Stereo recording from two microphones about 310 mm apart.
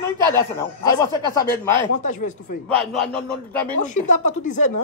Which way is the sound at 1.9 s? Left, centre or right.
Left.